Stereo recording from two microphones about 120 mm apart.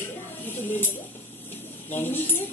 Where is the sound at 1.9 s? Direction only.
15° left (ahead or behind).